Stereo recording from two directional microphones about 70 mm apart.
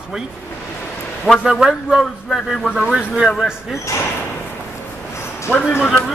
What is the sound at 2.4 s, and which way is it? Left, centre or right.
Speech, centre.